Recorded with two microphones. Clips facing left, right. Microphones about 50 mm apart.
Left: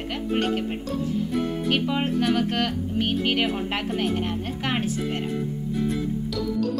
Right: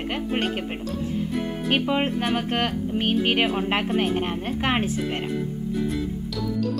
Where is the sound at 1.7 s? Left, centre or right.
Right.